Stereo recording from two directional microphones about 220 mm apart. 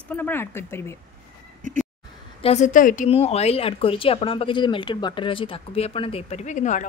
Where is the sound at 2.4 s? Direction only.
30° left (ahead or behind).